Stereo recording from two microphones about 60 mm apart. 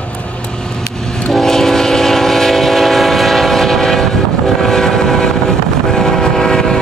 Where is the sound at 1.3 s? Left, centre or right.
Centre.